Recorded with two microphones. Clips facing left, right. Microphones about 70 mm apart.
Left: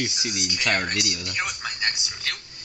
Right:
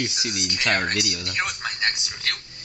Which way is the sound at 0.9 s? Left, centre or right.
Centre.